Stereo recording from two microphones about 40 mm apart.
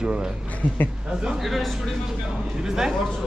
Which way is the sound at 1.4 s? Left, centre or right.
Centre.